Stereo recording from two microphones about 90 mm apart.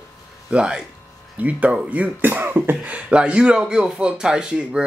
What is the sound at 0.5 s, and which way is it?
Speech, 10° right (ahead or behind).